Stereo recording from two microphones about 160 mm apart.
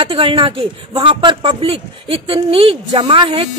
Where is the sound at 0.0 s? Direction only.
35° right (ahead or behind).